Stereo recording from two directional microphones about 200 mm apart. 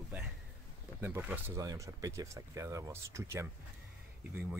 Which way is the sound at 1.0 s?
10° right (ahead or behind).